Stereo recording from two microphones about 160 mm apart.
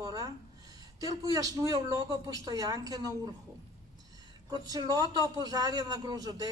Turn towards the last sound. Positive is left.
turn(degrees=-25)  # may be behind; listen again after turning